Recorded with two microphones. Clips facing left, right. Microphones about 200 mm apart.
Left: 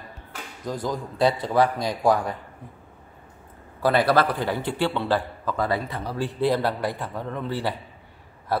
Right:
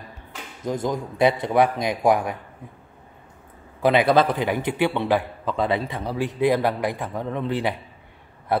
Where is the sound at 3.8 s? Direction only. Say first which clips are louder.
Right 2 dB; 20° right (ahead or behind).